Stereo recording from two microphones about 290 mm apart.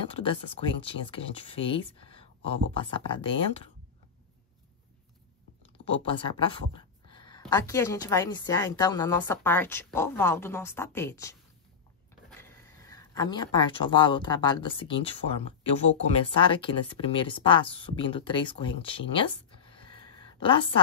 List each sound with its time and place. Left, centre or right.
0.0 s speech: centre
5.9 s speech: centre
16.3 s speech: centre